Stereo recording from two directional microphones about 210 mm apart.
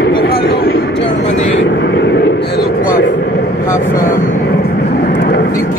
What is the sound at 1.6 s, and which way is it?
Vehicle, 55° left (ahead or behind).